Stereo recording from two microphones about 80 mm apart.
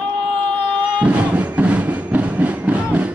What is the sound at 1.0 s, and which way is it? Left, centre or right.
Music, centre.